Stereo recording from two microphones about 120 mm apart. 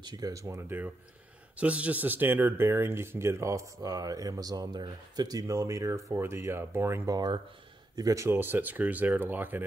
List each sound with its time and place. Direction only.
0.0 s speech: 30° right (ahead or behind); by 9.6 s 15° right (ahead or behind)